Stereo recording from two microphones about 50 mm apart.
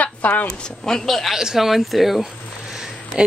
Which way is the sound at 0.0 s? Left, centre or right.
Left.